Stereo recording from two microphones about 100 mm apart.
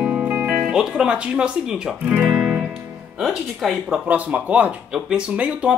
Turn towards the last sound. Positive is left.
turn(degrees=-10)  # may be behind; listen again after turning